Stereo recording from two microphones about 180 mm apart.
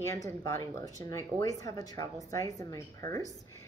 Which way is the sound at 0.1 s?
15° left (ahead or behind).